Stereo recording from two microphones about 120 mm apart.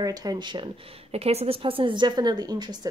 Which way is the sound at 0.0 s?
35° right (ahead or behind).